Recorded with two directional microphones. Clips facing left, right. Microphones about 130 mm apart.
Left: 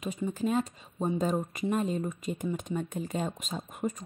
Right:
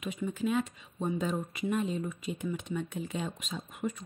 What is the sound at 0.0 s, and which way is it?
Speech, 35° left (ahead or behind).